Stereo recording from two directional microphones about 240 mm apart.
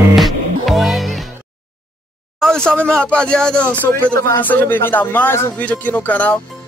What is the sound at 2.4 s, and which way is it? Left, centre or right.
Speech, centre.